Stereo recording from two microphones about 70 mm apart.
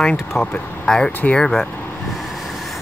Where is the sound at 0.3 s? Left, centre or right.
Left.